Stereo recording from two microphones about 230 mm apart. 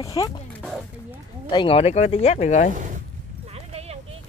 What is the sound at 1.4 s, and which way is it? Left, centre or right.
Speech, left.